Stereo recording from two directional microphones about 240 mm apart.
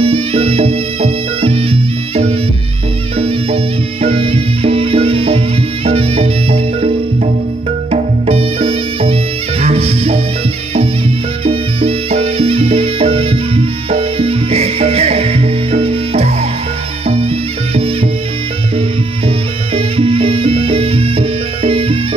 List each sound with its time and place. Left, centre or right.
0.0 s music: right
7.9 s music: right
11.4 s music: right
19.2 s music: right